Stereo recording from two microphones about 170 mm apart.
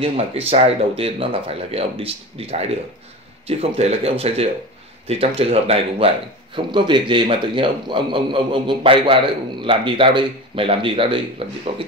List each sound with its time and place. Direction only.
0.0 s speech: 35° right (ahead or behind)